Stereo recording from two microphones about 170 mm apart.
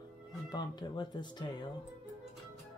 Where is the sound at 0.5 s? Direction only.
25° left (ahead or behind).